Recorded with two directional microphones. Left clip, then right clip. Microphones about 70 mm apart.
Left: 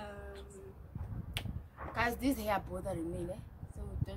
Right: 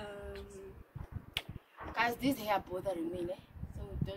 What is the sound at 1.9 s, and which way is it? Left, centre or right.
Speech, left.